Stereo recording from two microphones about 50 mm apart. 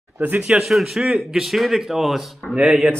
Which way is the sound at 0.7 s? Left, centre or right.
Centre.